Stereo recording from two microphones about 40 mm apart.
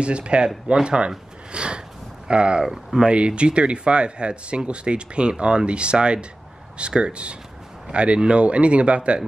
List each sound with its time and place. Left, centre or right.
0.0 s speech: right
1.5 s a sound: right
2.2 s speech: right
3.1 s speech: right